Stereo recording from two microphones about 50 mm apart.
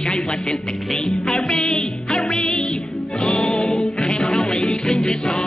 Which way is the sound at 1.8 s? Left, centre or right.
Centre.